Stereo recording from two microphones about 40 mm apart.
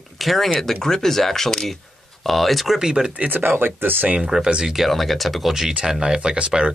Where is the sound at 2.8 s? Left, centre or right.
Centre.